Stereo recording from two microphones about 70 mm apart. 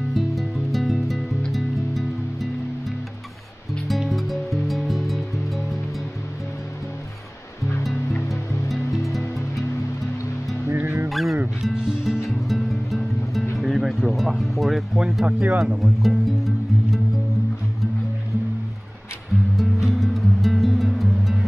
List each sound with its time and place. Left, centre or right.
0.1 s music: centre
3.8 s music: centre
8.3 s music: centre
10.7 s music: right
11.1 s music: centre
12.4 s music: centre
15.2 s speech: right
15.8 s music: centre
19.5 s music: centre